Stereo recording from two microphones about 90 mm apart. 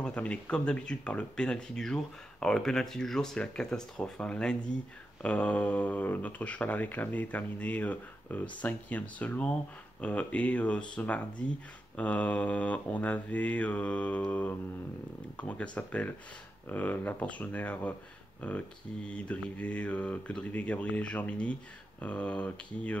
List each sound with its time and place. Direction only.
0.0 s speech: 15° left (ahead or behind)